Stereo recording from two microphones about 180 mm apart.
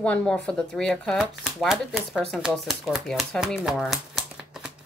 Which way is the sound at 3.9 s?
Centre (ahead or behind).